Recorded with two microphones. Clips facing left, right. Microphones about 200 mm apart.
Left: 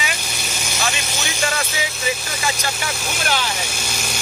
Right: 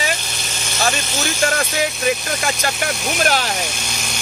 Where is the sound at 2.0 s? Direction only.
55° right (ahead or behind).